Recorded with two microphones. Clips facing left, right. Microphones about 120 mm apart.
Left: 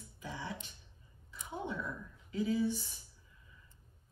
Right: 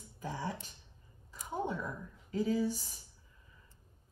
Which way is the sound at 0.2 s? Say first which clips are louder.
Right 4 dB; 45° right (ahead or behind).